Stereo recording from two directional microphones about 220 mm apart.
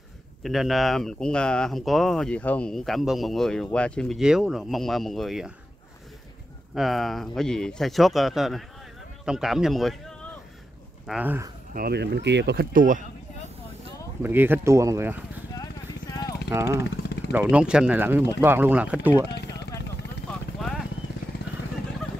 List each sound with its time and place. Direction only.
0.4 s speech: centre (ahead or behind)
6.7 s speech: centre (ahead or behind)
11.7 s speech: 45° right (ahead or behind)
14.2 s speech: 10° right (ahead or behind)
15.5 s clip-clop: 15° left (ahead or behind)
16.4 s speech: 10° right (ahead or behind)
19.4 s vehicle: 50° left (ahead or behind)